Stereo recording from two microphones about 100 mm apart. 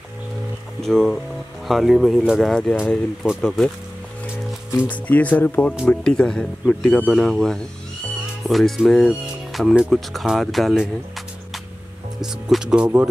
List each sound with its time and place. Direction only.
0.8 s speech: 5° left (ahead or behind)
4.7 s speech: 15° left (ahead or behind)
12.2 s speech: 5° right (ahead or behind)